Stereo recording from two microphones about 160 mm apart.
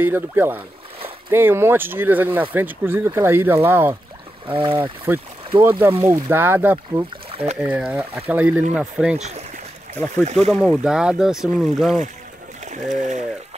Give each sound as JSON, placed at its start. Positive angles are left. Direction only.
{"t": 0.0, "sound": "speech", "side_deg": -15}
{"t": 4.5, "sound": "speech", "side_deg": -30}
{"t": 5.1, "sound": "speech", "side_deg": -15}
{"t": 7.2, "sound": "a sound", "side_deg": -35}
{"t": 7.6, "sound": "speech", "side_deg": -10}
{"t": 10.5, "sound": "speech", "side_deg": -5}
{"t": 12.6, "sound": "speech", "side_deg": -50}